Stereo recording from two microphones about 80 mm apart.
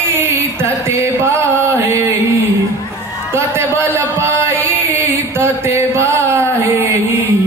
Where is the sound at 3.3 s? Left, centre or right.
Right.